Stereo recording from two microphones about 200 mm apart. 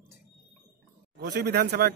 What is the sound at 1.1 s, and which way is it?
Speech, 55° right (ahead or behind).